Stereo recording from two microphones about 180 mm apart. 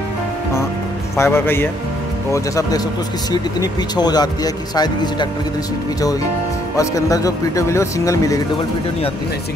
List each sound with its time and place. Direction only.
1.1 s speech: 15° left (ahead or behind)
3.9 s speech: 20° left (ahead or behind)
6.8 s speech: 20° left (ahead or behind)